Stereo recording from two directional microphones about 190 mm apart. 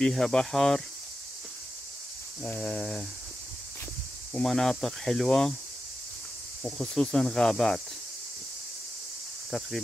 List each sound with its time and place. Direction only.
0.0 s speech: 5° left (ahead or behind)
2.4 s speech: 5° left (ahead or behind)
4.3 s speech: centre (ahead or behind)
6.6 s speech: 5° left (ahead or behind)